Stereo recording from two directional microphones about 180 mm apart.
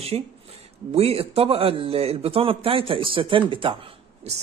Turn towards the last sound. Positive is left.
turn(degrees=-30)  # may be behind; listen again after turning